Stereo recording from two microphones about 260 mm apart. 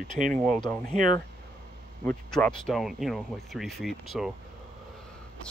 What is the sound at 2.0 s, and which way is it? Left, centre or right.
Speech, centre.